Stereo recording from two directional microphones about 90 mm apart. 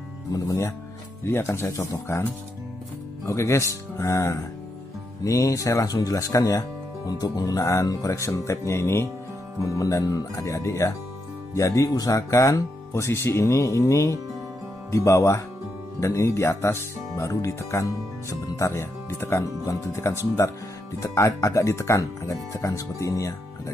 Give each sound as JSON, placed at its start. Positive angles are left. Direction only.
{"t": 0.3, "sound": "speech", "side_deg": 40}
{"t": 3.3, "sound": "speech", "side_deg": 35}